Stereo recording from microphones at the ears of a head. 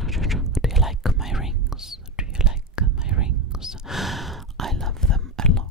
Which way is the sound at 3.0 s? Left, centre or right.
Right.